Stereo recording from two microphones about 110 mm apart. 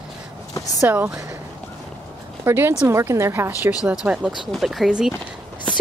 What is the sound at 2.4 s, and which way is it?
Speech, 20° right (ahead or behind).